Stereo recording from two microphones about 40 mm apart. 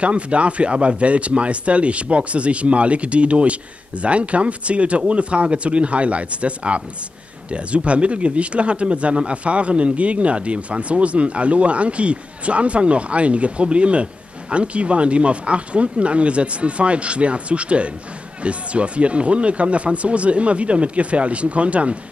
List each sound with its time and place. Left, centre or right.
0.0 s speech: right